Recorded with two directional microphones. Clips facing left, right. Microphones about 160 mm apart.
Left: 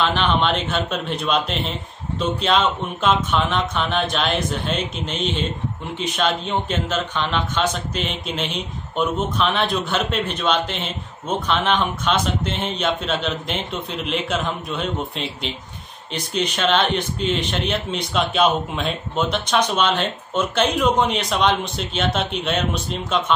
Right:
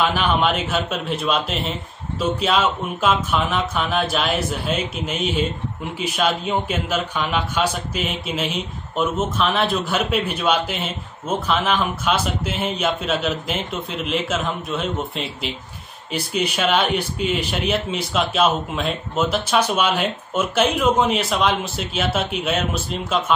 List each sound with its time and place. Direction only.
0.0 s a man's voice: 10° right (ahead or behind)